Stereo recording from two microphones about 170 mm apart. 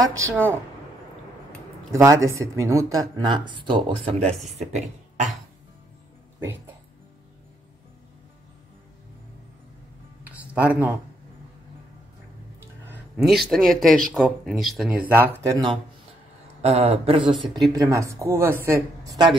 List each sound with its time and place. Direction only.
0.0 s speech: 20° right (ahead or behind)
1.9 s speech: 20° right (ahead or behind); by 5.3 s 40° right (ahead or behind)
10.2 s music: 10° right (ahead or behind)
13.2 s speech: centre (ahead or behind)
16.6 s speech: 40° right (ahead or behind)
17.7 s speech: 20° right (ahead or behind)